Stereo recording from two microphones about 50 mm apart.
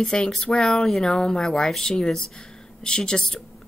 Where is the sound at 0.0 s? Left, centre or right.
Centre.